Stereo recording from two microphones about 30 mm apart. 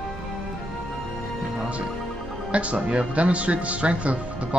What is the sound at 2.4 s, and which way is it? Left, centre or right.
Speech, right.